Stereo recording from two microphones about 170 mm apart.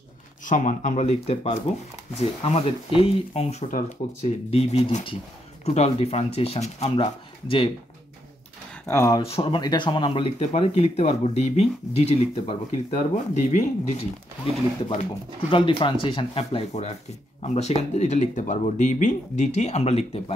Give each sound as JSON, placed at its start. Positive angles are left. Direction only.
{"t": 0.5, "sound": "speech", "side_deg": 50}
{"t": 8.8, "sound": "speech", "side_deg": 20}
{"t": 9.2, "sound": "speech", "side_deg": 30}
{"t": 15.5, "sound": "speech", "side_deg": 30}